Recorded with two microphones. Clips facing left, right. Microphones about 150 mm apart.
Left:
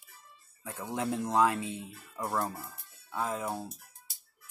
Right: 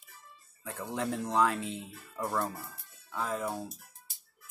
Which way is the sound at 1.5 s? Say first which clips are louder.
Even; 65° right (ahead or behind).